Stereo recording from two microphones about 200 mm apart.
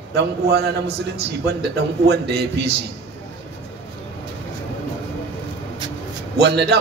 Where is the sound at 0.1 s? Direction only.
55° right (ahead or behind).